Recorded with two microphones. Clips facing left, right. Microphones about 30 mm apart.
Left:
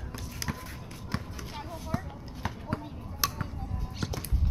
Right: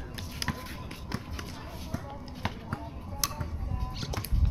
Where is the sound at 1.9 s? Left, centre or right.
Left.